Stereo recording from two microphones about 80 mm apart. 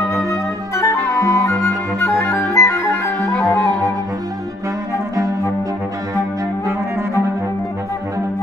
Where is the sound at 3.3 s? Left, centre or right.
Centre.